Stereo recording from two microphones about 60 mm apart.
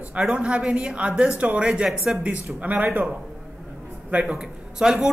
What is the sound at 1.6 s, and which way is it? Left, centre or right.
Speech, centre.